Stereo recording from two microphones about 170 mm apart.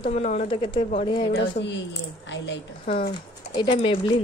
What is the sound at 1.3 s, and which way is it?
A woman's voice, 85° left.